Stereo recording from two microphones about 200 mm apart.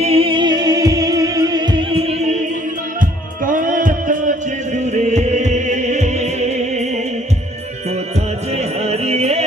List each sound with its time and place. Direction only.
0.0 s music: 30° right (ahead or behind)
3.4 s music: 40° right (ahead or behind)
8.8 s music: 30° right (ahead or behind)